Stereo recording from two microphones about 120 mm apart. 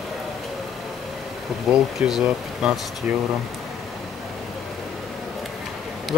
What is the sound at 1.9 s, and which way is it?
Speech, 5° right (ahead or behind).